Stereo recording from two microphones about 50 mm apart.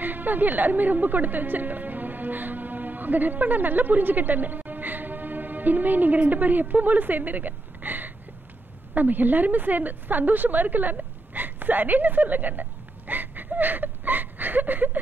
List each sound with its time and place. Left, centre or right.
0.0 s a woman's voice: right